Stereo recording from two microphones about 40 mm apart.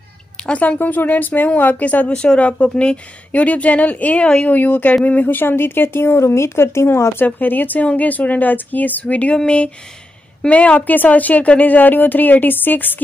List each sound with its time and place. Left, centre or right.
0.4 s a sound: centre
0.7 s a woman's voice: left
2.1 s a woman's voice: left
7.2 s a woman's voice: left
9.0 s speech: left
10.5 s a woman's voice: left